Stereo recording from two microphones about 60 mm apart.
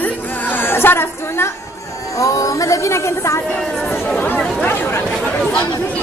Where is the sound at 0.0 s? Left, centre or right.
Left.